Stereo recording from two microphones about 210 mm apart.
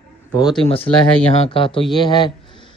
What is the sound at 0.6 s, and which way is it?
A man's voice, 25° left (ahead or behind).